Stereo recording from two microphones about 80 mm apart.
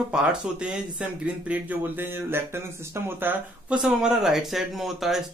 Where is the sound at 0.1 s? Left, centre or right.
Centre.